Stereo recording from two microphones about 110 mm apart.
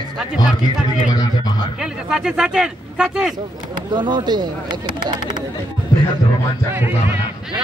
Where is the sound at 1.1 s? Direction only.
40° left (ahead or behind).